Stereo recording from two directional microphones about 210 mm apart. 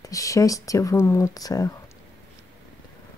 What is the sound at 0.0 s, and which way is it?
Speech, 15° left (ahead or behind).